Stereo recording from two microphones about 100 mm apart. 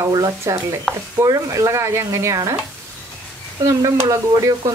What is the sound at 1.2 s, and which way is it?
A woman's voice, 35° right (ahead or behind).